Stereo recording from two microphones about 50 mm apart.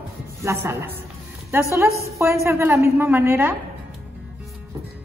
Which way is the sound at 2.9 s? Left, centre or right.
Right.